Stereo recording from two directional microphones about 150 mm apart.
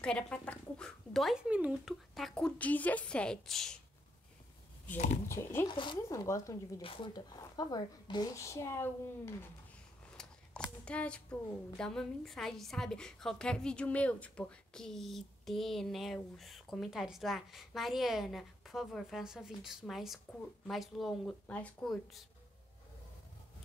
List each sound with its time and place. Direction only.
0.0 s a woman's voice: 5° left (ahead or behind)
5.3 s speech: 15° left (ahead or behind)
5.8 s speech: 25° left (ahead or behind)
6.8 s speech: 35° left (ahead or behind); by 9.5 s 15° left (ahead or behind)
10.2 s a sound: 5° left (ahead or behind)
10.9 s a woman's voice: 10° left (ahead or behind)